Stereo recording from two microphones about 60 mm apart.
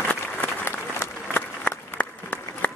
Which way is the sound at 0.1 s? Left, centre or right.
Left.